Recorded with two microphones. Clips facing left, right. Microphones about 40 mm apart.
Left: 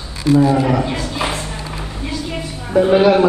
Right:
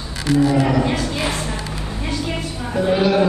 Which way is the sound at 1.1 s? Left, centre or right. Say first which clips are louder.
Left 1 dB; left.